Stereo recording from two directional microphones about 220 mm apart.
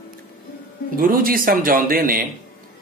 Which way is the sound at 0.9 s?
40° right (ahead or behind).